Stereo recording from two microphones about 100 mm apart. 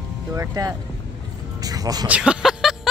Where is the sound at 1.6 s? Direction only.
40° right (ahead or behind).